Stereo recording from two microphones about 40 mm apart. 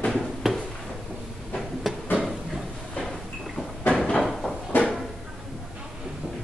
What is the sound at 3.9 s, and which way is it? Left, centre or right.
Cupboard open or close, left.